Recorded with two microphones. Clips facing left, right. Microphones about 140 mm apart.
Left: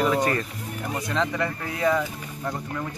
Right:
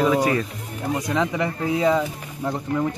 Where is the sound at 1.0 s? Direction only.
15° right (ahead or behind).